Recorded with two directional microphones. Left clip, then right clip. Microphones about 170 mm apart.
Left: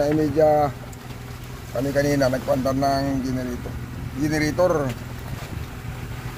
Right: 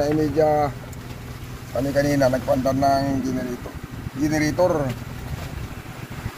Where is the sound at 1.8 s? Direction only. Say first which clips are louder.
Right 1 dB; 10° left (ahead or behind).